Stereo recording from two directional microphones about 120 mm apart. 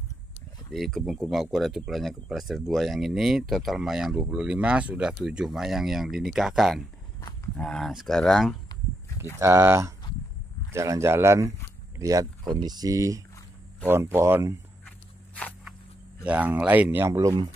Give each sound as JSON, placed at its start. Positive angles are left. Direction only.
{"t": 0.7, "sound": "speech", "side_deg": 0}
{"t": 9.4, "sound": "speech", "side_deg": -25}
{"t": 14.9, "sound": "walk", "side_deg": 10}
{"t": 16.3, "sound": "speech", "side_deg": -15}